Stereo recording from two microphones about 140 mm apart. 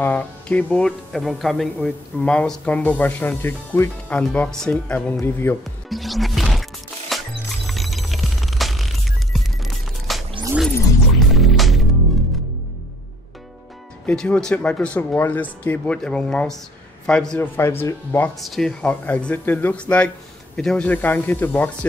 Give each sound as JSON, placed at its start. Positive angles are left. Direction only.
{"t": 0.0, "sound": "speech", "side_deg": 10}
{"t": 5.9, "sound": "music", "side_deg": 0}
{"t": 14.0, "sound": "speech", "side_deg": 5}
{"t": 17.6, "sound": "speech", "side_deg": 20}
{"t": 18.4, "sound": "speech", "side_deg": 0}